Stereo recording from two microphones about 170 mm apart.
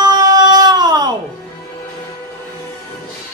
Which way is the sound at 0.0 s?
25° right (ahead or behind).